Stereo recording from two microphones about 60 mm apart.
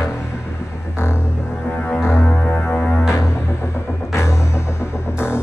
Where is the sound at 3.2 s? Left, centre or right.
Left.